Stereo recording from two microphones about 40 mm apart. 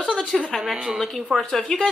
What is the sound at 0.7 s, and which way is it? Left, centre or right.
Speech, centre.